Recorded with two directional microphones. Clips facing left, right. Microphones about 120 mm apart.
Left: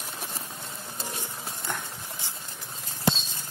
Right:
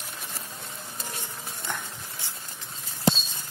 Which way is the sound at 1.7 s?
5° left (ahead or behind).